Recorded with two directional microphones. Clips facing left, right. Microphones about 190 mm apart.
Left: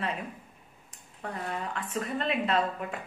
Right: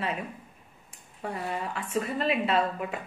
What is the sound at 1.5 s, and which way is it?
A woman's voice, 10° right (ahead or behind).